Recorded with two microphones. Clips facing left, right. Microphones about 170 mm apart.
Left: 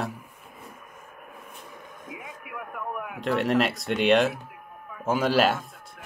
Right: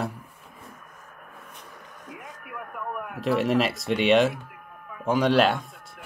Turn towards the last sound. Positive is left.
turn(degrees=0)  # may be behind; listen again after turning